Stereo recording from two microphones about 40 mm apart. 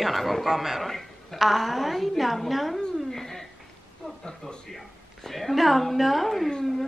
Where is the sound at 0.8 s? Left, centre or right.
Centre.